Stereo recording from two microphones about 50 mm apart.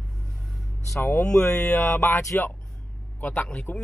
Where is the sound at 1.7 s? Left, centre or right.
Left.